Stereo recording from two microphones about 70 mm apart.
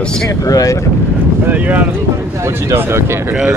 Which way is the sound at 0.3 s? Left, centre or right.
Left.